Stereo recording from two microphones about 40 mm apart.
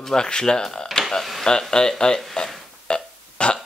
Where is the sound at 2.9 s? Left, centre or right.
Left.